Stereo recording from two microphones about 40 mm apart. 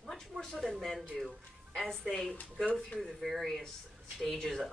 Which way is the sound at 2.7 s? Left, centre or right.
Left.